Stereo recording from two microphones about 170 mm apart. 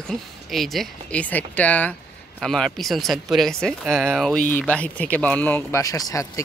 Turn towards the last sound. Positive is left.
turn(degrees=20)  # may be behind; listen again after turning